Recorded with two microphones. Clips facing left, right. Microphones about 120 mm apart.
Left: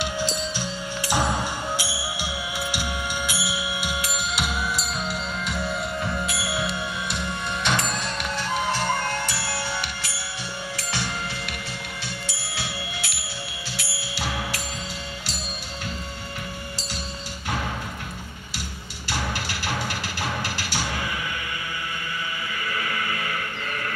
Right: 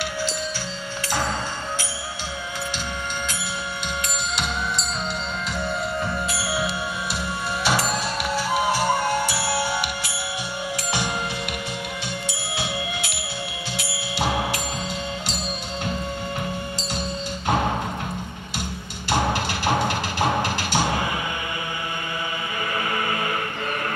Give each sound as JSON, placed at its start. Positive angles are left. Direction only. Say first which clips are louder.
{"t": 0.0, "sound": "music", "louder": "even", "side_deg": 15}
{"t": 3.3, "sound": "music", "louder": "left 1 dB", "side_deg": 10}
{"t": 5.6, "sound": "music", "louder": "right 3 dB", "side_deg": 0}
{"t": 8.5, "sound": "music", "louder": "right 3 dB", "side_deg": -10}
{"t": 12.5, "sound": "music", "louder": "right 5 dB", "side_deg": -20}
{"t": 19.3, "sound": "music", "louder": "right 7 dB", "side_deg": -20}
{"t": 22.8, "sound": "music", "louder": "right 4 dB", "side_deg": -30}